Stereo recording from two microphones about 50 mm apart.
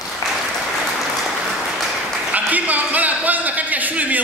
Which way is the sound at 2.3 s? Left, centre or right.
Right.